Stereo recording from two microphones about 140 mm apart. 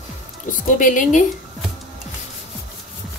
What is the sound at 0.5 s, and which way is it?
Speech, 70° left (ahead or behind).